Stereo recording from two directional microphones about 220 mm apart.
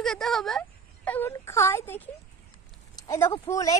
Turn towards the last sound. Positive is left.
turn(degrees=15)  # may be behind; listen again after turning